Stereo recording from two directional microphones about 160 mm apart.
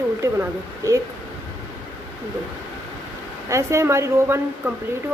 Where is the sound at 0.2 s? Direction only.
20° right (ahead or behind).